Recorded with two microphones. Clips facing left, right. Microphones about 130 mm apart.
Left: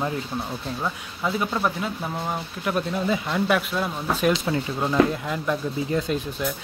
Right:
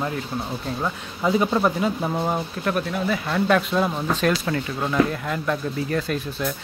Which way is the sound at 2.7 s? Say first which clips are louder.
Left 1 dB; 25° left (ahead or behind).